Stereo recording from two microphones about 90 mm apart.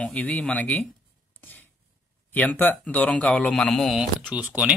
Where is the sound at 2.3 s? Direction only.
20° left (ahead or behind).